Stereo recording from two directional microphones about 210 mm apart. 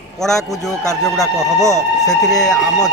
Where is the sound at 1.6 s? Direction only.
15° left (ahead or behind).